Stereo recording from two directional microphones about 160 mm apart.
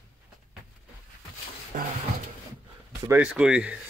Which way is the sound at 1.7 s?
55° right (ahead or behind).